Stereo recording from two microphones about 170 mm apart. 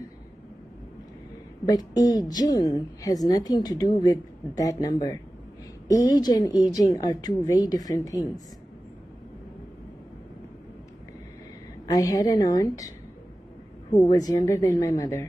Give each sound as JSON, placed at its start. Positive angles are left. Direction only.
{"t": 1.7, "sound": "a woman's voice", "side_deg": 20}
{"t": 11.9, "sound": "a woman's voice", "side_deg": 20}
{"t": 14.0, "sound": "a woman's voice", "side_deg": 20}